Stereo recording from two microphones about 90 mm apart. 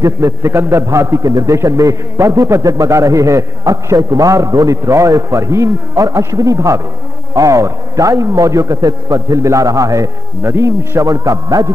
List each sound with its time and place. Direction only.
0.0 s a man's voice: 30° right (ahead or behind)